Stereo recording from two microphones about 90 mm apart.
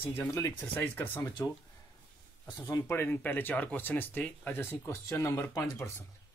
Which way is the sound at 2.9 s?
25° left (ahead or behind).